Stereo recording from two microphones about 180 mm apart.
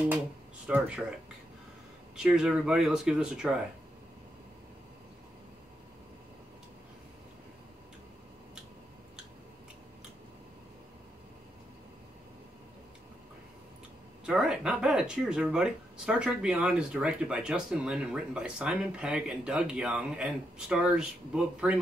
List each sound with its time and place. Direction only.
0.7 s speech: 10° right (ahead or behind)
2.1 s speech: 5° right (ahead or behind)
14.2 s speech: 5° right (ahead or behind)